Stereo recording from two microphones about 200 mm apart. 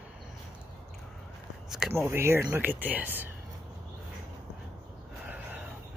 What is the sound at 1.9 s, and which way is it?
Speech, 15° right (ahead or behind).